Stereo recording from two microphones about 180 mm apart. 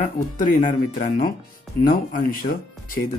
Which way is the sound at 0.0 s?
45° left (ahead or behind).